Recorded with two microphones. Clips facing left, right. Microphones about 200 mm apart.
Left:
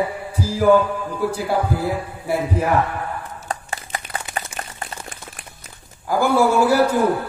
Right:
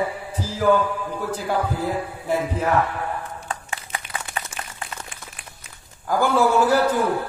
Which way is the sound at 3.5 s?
40° left (ahead or behind).